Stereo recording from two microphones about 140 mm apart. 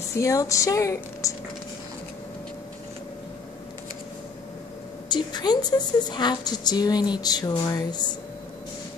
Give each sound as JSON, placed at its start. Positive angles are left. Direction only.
{"t": 0.2, "sound": "a woman's voice", "side_deg": 20}
{"t": 5.1, "sound": "a woman's voice", "side_deg": 30}